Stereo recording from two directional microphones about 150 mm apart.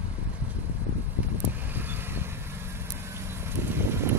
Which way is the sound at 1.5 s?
10° right (ahead or behind).